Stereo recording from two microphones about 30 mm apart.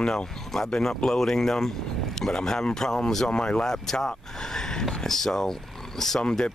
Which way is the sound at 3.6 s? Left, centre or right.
Centre.